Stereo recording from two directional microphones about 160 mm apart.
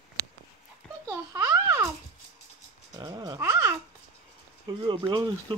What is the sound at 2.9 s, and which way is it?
Dog, 25° right (ahead or behind).